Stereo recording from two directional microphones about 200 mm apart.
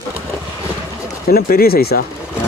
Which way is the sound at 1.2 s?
50° left (ahead or behind).